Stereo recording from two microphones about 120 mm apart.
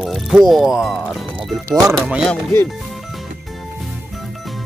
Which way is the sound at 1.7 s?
30° right (ahead or behind).